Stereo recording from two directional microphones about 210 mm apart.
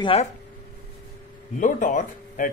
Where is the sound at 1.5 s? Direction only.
40° left (ahead or behind).